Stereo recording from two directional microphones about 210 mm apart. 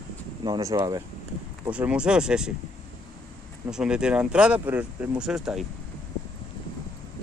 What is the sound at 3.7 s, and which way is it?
Speech, 5° right (ahead or behind).